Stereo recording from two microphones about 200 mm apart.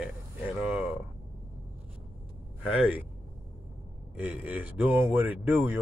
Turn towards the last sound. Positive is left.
turn(degrees=-10)  # may be behind; listen again after turning